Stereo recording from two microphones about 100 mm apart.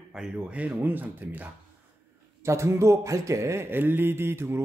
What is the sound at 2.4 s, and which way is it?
Speech, 30° right (ahead or behind).